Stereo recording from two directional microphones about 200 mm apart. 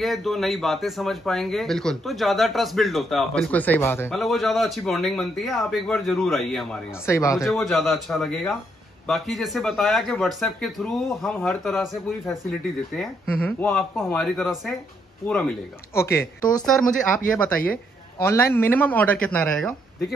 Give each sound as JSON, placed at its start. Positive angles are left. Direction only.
{"t": 0.0, "sound": "speech", "side_deg": 0}
{"t": 4.1, "sound": "speech", "side_deg": 0}
{"t": 7.1, "sound": "speech", "side_deg": 15}
{"t": 7.3, "sound": "speech", "side_deg": 0}
{"t": 18.2, "sound": "speech", "side_deg": 10}